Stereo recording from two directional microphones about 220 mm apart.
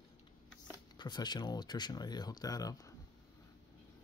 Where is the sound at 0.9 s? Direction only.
20° left (ahead or behind).